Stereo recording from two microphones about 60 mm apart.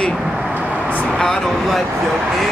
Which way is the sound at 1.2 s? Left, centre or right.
Centre.